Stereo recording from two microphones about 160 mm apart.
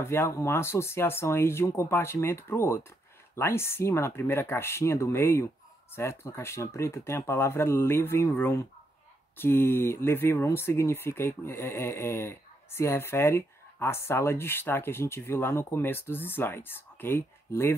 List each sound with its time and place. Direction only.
0.0 s speech: 15° left (ahead or behind)